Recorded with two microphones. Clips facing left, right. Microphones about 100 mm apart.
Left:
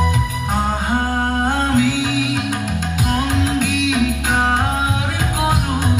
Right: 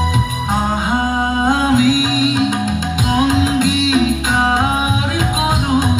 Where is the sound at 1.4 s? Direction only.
20° right (ahead or behind).